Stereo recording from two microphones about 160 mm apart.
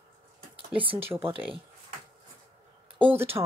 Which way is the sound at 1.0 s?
15° right (ahead or behind).